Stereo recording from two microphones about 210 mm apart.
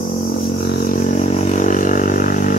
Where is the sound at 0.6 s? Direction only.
50° left (ahead or behind).